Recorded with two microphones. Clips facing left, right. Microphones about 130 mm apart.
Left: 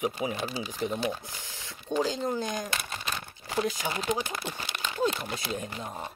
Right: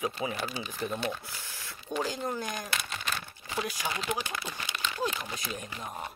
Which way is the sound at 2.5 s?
40° left (ahead or behind).